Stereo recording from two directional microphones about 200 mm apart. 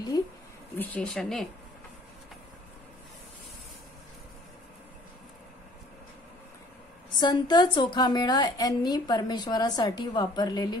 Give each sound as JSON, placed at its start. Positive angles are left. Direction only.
{"t": 0.1, "sound": "a woman's voice", "side_deg": 20}
{"t": 0.7, "sound": "speech", "side_deg": 5}
{"t": 7.2, "sound": "a woman's voice", "side_deg": 20}